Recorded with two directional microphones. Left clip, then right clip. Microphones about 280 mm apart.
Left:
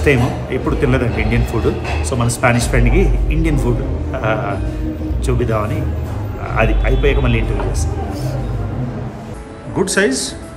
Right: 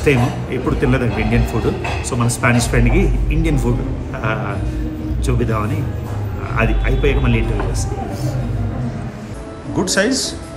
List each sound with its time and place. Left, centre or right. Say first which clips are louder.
0.0 s speech: left 1 dB; centre
9.8 s a man's voice: left 1 dB; centre